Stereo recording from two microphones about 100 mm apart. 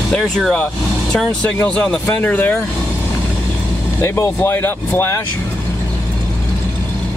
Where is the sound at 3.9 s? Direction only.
30° left (ahead or behind).